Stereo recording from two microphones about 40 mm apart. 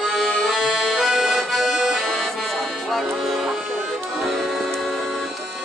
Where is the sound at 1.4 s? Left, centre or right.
Centre.